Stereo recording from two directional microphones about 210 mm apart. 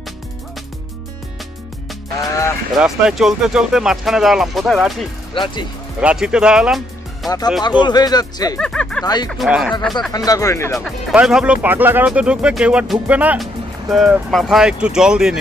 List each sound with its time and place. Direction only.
2.8 s speech: centre (ahead or behind)
5.3 s speech: 20° left (ahead or behind)
5.9 s speech: 5° right (ahead or behind)
7.2 s speech: 15° left (ahead or behind)
8.5 s speech: 5° left (ahead or behind)
9.0 s speech: 20° left (ahead or behind)
9.3 s speech: centre (ahead or behind)
10.1 s speech: 15° left (ahead or behind)
11.1 s speech: 5° right (ahead or behind)